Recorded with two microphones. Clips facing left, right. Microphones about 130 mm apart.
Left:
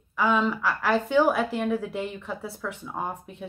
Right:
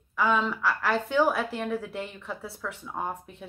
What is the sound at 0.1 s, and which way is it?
Speech, centre (ahead or behind).